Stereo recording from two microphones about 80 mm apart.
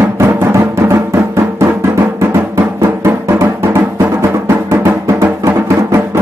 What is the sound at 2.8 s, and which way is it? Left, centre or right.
Music, right.